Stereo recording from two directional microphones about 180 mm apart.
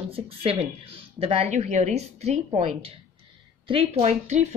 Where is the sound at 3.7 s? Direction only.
30° right (ahead or behind).